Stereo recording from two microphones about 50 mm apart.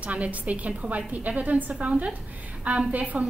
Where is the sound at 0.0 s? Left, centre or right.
Right.